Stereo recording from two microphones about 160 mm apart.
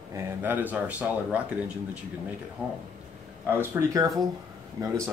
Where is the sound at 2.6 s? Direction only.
10° right (ahead or behind).